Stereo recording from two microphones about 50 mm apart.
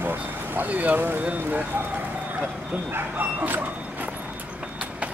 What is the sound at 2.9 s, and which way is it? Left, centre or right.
Bow-wow, right.